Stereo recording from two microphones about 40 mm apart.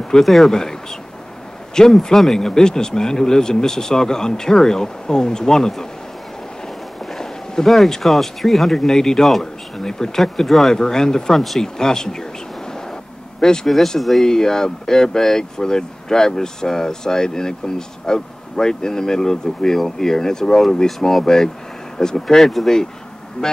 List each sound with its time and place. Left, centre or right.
0.2 s speech: centre
0.5 s speech: centre
1.8 s speech: centre
7.1 s a sound: centre
8.0 s speech: centre
10.7 s speech: centre
11.3 s speech: centre
11.6 s speech: centre
13.7 s speech: centre
14.2 s speech: centre
22.4 s speech: centre
23.4 s speech: left